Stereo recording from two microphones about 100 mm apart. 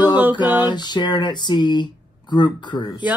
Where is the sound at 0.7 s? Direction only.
45° left (ahead or behind).